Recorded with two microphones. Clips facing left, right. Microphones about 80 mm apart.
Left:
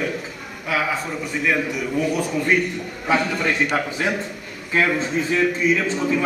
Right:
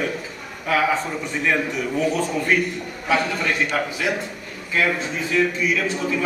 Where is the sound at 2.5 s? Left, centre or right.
Centre.